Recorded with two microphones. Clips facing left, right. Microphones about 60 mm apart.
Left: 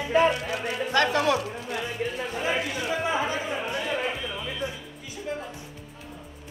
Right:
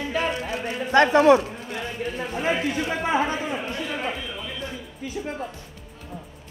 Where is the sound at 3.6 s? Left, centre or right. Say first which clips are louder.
Even; left.